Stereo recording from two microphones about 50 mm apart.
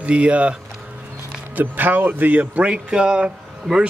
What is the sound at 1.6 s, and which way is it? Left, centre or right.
Speech, right.